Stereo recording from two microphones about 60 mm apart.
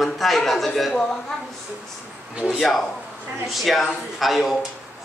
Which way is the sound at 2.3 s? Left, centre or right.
Centre.